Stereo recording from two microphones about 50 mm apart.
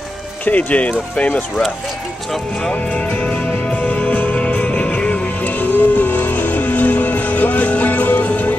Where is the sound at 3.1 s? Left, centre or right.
Left.